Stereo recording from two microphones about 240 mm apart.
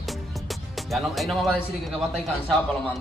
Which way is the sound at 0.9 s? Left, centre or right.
Centre.